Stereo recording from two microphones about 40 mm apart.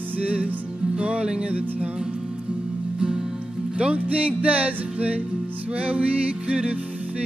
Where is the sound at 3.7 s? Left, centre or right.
Right.